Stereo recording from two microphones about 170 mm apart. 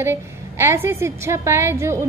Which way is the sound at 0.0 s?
15° right (ahead or behind).